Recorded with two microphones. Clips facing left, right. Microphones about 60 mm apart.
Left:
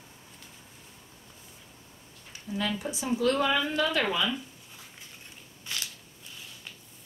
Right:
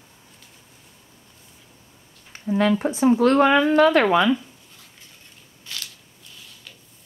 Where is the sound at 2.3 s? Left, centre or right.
Right.